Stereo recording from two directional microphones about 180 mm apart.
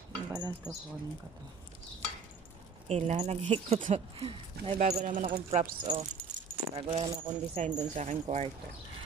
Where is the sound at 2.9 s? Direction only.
35° right (ahead or behind).